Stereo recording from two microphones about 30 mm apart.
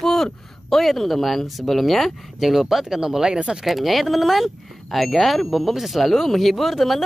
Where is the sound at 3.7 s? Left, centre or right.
Centre.